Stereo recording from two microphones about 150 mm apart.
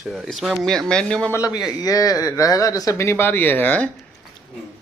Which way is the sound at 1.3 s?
25° left (ahead or behind).